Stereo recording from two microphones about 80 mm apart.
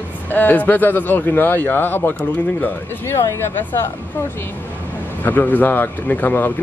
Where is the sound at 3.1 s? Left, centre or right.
Left.